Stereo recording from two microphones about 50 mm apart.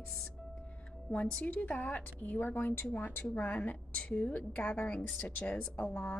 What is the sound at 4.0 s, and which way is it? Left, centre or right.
Speech, centre.